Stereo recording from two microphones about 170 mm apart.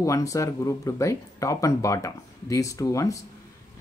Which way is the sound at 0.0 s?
20° left (ahead or behind).